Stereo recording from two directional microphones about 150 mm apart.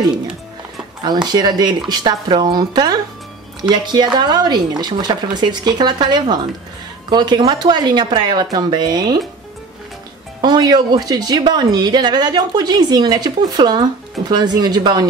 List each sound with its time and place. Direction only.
1.0 s a woman's voice: 30° right (ahead or behind)
10.4 s a woman's voice: 30° right (ahead or behind)